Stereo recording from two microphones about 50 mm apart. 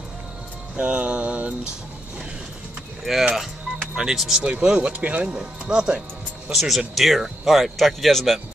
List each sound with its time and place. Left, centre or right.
0.7 s music: right
3.1 s speech: centre
6.5 s speech: centre